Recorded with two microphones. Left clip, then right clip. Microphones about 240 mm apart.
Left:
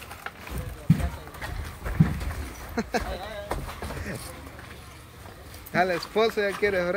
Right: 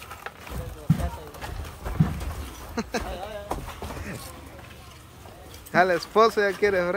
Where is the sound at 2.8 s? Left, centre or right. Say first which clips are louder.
Left 1 dB; centre.